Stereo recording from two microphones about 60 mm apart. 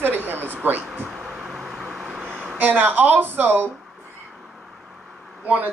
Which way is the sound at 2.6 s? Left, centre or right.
Right.